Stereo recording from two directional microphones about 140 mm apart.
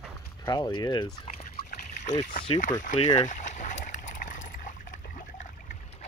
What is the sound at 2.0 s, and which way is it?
Speech, 60° left (ahead or behind).